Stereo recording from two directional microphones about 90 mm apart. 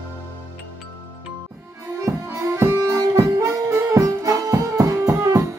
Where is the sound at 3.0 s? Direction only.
40° right (ahead or behind).